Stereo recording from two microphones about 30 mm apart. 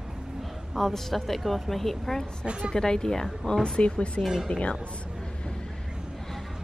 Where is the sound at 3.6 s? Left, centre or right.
Left.